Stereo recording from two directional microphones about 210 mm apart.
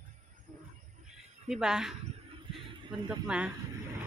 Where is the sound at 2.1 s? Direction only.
25° right (ahead or behind).